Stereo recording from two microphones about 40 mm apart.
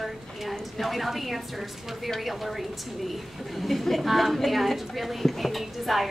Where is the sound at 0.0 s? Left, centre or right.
Centre.